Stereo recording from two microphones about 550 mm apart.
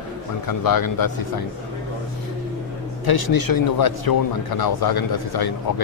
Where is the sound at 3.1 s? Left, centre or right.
Left.